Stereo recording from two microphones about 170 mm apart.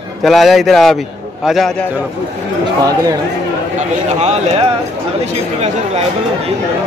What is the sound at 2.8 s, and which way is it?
Speech, 20° right (ahead or behind).